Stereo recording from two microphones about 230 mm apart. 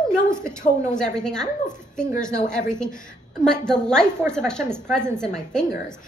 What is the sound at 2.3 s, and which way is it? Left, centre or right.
Speech, left.